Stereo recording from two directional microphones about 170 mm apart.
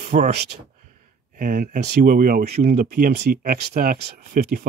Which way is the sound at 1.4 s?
50° right (ahead or behind).